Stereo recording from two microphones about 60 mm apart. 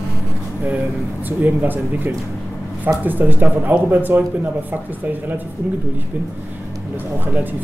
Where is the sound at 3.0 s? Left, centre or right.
Right.